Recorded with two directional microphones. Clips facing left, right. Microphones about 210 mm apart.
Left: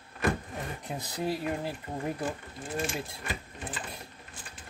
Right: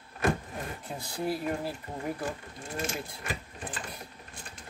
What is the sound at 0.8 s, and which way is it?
Speech, 20° left (ahead or behind).